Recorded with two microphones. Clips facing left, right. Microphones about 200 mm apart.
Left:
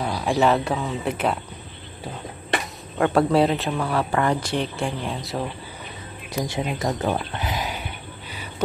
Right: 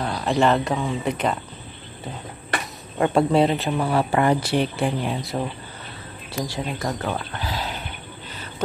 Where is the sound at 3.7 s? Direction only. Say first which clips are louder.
Right 2 dB; 20° right (ahead or behind); by 5.4 s centre (ahead or behind).